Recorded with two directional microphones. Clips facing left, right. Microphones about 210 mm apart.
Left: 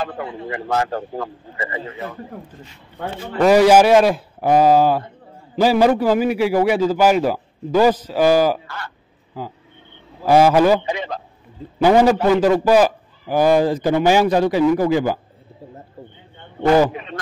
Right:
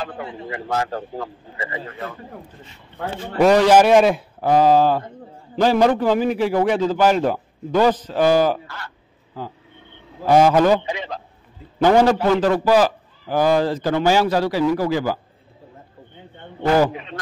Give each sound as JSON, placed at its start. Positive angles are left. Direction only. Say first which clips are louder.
{"t": 0.0, "sound": "a man's voice", "louder": "left 3 dB", "side_deg": 50}
{"t": 3.5, "sound": "a man's voice", "louder": "left 2 dB", "side_deg": 10}
{"t": 4.4, "sound": "a man's voice", "louder": "left 1 dB", "side_deg": 10}
{"t": 8.6, "sound": "a man's voice", "louder": "left 3 dB", "side_deg": 55}
{"t": 10.2, "sound": "a man's voice", "louder": "left 1 dB", "side_deg": 10}
{"t": 10.9, "sound": "a man's voice", "louder": "left 3 dB", "side_deg": 50}
{"t": 11.8, "sound": "a man's voice", "louder": "left 1 dB", "side_deg": 10}